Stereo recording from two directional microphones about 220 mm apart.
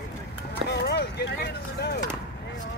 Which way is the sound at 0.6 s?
50° left (ahead or behind).